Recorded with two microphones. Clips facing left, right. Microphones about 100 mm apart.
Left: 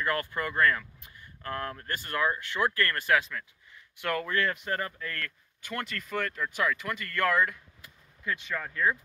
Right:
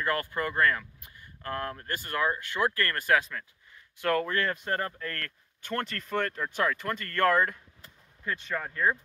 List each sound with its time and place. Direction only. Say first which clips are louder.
0.0 s speech: right 1 dB; 25° right (ahead or behind)
8.5 s speech: right 1 dB; 20° right (ahead or behind)